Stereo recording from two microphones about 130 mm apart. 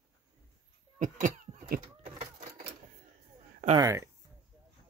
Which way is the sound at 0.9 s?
90° right.